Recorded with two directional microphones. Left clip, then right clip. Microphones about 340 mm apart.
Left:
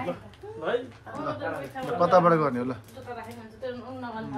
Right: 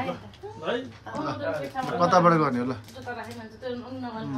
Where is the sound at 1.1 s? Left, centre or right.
Right.